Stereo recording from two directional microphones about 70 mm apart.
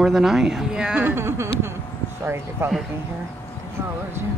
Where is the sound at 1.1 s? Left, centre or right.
Right.